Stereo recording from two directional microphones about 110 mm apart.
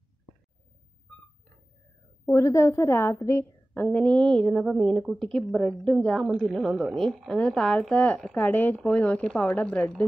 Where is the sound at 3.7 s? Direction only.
10° left (ahead or behind).